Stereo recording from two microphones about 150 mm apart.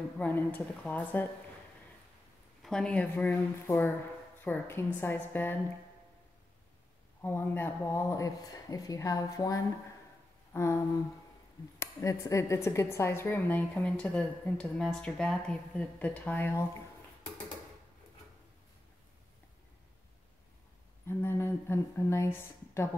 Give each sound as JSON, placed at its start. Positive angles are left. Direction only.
{"t": 0.2, "sound": "speech", "side_deg": 10}
{"t": 2.6, "sound": "speech", "side_deg": 5}
{"t": 7.2, "sound": "speech", "side_deg": 15}
{"t": 10.5, "sound": "a sound", "side_deg": 20}
{"t": 11.8, "sound": "speech", "side_deg": 20}
{"t": 21.1, "sound": "a woman's voice", "side_deg": 15}